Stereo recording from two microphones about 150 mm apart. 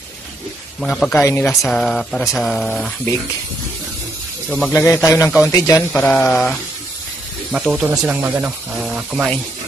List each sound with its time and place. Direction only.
0.7 s speech: 5° left (ahead or behind)
1.5 s speech: centre (ahead or behind)
4.6 s a man's voice: 10° left (ahead or behind)
5.9 s speech: 5° left (ahead or behind)
7.5 s speech: 5° right (ahead or behind)